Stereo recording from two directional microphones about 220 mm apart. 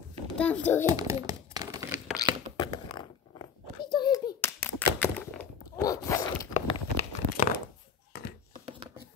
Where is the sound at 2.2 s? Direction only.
20° left (ahead or behind).